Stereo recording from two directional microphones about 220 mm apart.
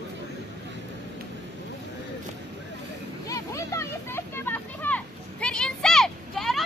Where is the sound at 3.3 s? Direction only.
15° left (ahead or behind).